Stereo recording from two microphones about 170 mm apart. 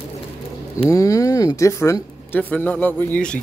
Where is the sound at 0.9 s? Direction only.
20° left (ahead or behind).